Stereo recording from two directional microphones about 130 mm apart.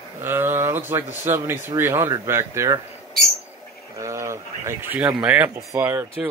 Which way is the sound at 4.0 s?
20° right (ahead or behind).